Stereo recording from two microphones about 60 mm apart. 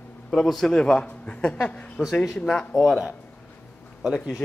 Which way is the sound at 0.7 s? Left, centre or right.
Centre.